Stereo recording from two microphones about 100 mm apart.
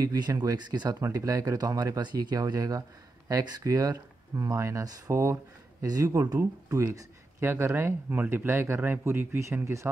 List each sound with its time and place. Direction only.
0.0 s speech: 40° right (ahead or behind)
1.0 s speech: 35° right (ahead or behind)